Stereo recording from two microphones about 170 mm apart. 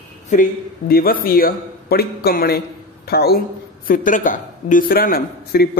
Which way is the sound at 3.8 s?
55° left (ahead or behind).